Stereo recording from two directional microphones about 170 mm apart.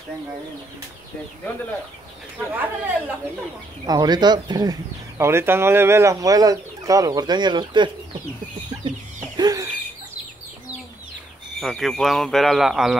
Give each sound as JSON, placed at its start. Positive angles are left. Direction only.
{"t": 2.3, "sound": "speech", "side_deg": -10}
{"t": 3.8, "sound": "speech", "side_deg": -25}
{"t": 9.4, "sound": "bird", "side_deg": -20}
{"t": 11.6, "sound": "a man's voice", "side_deg": 0}